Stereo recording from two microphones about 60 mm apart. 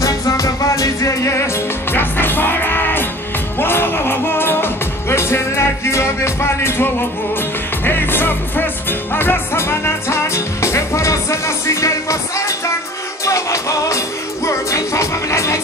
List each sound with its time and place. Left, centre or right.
0.0 s music: left
1.9 s music: left